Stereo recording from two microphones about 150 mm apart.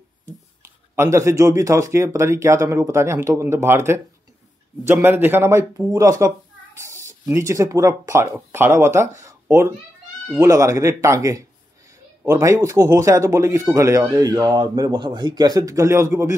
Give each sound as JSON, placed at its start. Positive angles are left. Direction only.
{"t": 0.6, "sound": "speech", "side_deg": -20}
{"t": 6.8, "sound": "a sound", "side_deg": -20}
{"t": 7.2, "sound": "speech", "side_deg": -20}